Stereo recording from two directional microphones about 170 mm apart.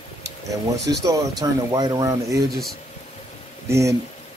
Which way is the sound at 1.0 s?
20° right (ahead or behind).